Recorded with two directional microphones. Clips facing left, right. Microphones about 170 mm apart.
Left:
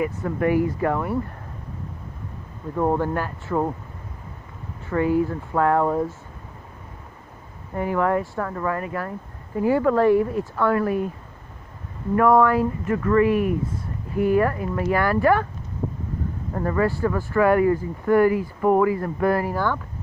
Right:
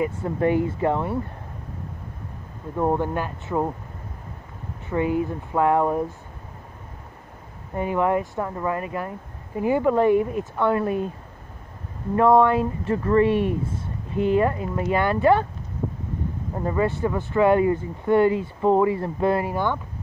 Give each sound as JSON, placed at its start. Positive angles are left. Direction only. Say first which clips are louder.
{"t": 0.0, "sound": "speech", "louder": "even", "side_deg": -25}
{"t": 2.7, "sound": "speech", "louder": "left 1 dB", "side_deg": -10}
{"t": 4.8, "sound": "speech", "louder": "left 2 dB", "side_deg": -20}
{"t": 7.7, "sound": "speech", "louder": "even", "side_deg": -20}
{"t": 12.2, "sound": "speech", "louder": "even", "side_deg": -25}
{"t": 16.5, "sound": "speech", "louder": "left 1 dB", "side_deg": -20}